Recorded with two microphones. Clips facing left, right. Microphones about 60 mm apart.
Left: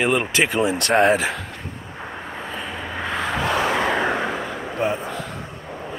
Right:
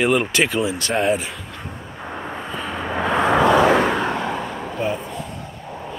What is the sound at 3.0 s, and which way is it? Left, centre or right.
Vehicle, right.